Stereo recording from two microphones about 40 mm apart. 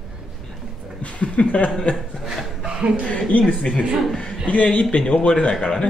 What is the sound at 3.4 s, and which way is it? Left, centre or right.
Speech, left.